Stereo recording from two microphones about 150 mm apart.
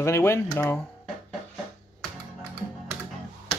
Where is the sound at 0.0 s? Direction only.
15° left (ahead or behind).